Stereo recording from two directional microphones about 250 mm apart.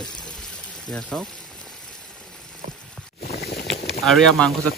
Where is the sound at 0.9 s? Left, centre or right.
Centre.